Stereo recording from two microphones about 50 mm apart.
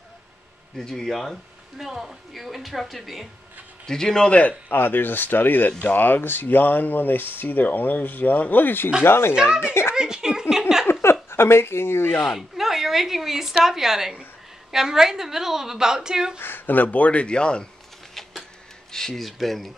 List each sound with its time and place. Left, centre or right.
0.7 s speech: centre
1.8 s a woman's voice: centre
3.8 s speech: centre
4.3 s speech: left
4.7 s speech: left
9.0 s speech: left
9.3 s a woman's voice: centre
9.9 s a sound: centre
10.9 s a sound: left
12.2 s a woman's voice: centre
16.3 s speech: left; by 17.6 s centre
18.9 s a woman's voice: centre